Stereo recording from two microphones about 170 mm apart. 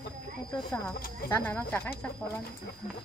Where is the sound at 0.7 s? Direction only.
10° left (ahead or behind).